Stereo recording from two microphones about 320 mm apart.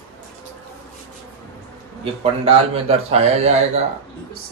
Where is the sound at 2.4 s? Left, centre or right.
Centre.